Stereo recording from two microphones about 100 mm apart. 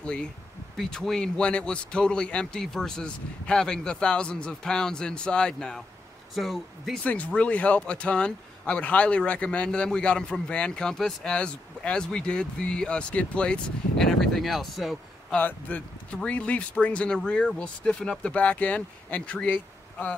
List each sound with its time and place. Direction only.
0.0 s speech: 10° left (ahead or behind)
7.1 s speech: 15° left (ahead or behind)
15.3 s speech: 15° left (ahead or behind)